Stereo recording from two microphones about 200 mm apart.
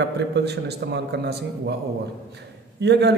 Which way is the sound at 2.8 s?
60° right (ahead or behind).